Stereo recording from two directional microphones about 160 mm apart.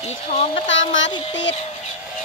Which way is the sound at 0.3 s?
40° left (ahead or behind).